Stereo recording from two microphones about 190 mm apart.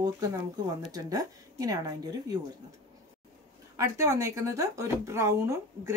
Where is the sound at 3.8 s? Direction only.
15° right (ahead or behind).